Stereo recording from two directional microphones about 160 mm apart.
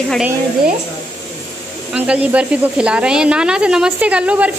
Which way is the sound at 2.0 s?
10° right (ahead or behind).